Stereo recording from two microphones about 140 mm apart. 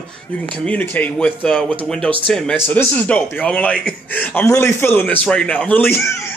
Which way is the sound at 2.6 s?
15° left (ahead or behind).